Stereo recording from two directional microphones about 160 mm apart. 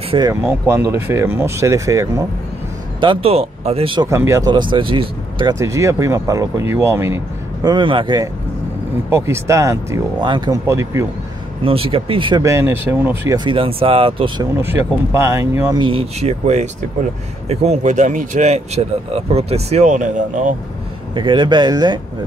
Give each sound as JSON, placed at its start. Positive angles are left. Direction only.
{"t": 0.3, "sound": "speech", "side_deg": -15}
{"t": 3.0, "sound": "speech", "side_deg": -35}
{"t": 4.1, "sound": "speech", "side_deg": -20}
{"t": 5.6, "sound": "speech", "side_deg": -20}
{"t": 7.6, "sound": "speech", "side_deg": -30}
{"t": 9.1, "sound": "speech", "side_deg": -15}
{"t": 11.6, "sound": "speech", "side_deg": -35}
{"t": 12.4, "sound": "speech", "side_deg": -15}
{"t": 13.4, "sound": "speech", "side_deg": -35}
{"t": 14.5, "sound": "speech", "side_deg": -15}
{"t": 15.8, "sound": "speech", "side_deg": -35}
{"t": 21.1, "sound": "speech", "side_deg": -30}